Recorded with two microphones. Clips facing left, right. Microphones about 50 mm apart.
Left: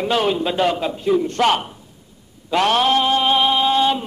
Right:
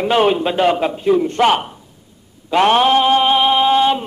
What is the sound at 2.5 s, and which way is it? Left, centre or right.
Mantra, centre.